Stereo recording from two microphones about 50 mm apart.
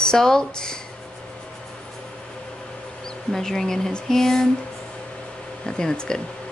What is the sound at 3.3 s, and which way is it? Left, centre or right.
Speech, centre.